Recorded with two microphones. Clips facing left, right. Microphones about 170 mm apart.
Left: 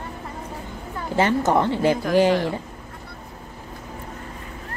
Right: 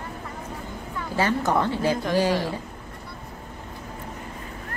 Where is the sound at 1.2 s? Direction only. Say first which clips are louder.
Left 4 dB; 20° left (ahead or behind).